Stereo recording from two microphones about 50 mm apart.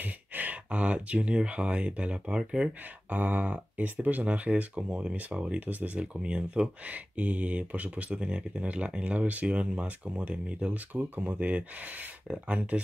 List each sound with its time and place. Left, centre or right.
0.0 s speech: right; by 2.7 s centre
3.1 s speech: right
6.9 s speech: right
10.9 s speech: right
11.3 s speech: right